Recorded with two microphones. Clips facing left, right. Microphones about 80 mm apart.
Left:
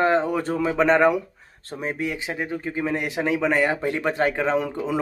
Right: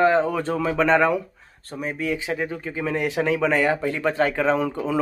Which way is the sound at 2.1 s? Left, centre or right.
Centre.